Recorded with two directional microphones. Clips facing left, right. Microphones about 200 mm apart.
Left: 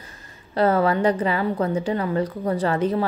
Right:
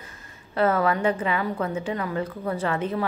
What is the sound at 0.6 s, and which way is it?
A woman's voice, 30° left (ahead or behind).